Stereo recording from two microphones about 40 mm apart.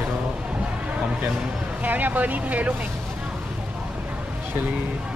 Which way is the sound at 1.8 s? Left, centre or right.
Right.